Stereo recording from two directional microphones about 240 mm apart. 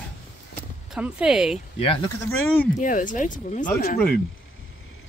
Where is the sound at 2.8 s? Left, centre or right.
Left.